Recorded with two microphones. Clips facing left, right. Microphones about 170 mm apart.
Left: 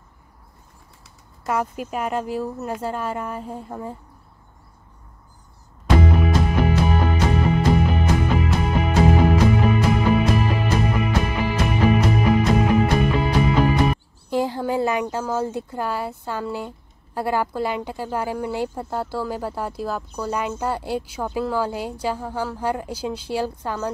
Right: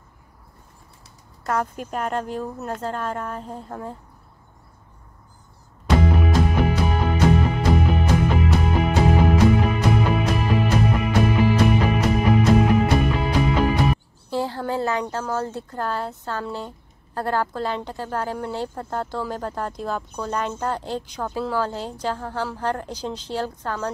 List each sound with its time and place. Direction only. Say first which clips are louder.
1.4 s speech: left 1 dB; 10° left (ahead or behind)
6.1 s music: even; centre (ahead or behind)
14.3 s speech: left 3 dB; 15° left (ahead or behind)